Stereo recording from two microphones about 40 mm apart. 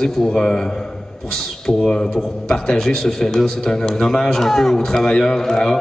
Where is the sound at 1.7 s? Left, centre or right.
Centre.